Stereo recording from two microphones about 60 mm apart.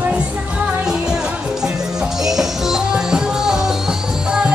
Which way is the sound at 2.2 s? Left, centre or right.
Centre.